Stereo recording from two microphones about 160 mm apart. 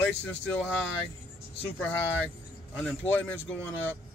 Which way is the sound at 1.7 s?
5° left (ahead or behind).